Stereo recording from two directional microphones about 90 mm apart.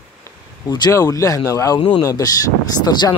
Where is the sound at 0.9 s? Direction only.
35° left (ahead or behind).